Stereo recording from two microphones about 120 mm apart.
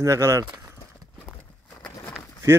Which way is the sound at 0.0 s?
25° right (ahead or behind).